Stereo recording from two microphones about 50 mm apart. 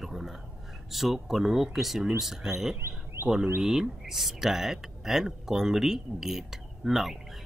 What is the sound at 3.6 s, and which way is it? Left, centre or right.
Speech, centre.